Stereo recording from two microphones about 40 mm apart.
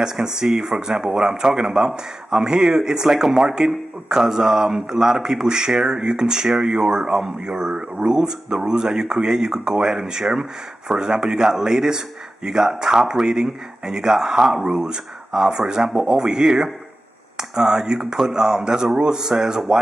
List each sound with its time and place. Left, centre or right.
0.0 s speech: centre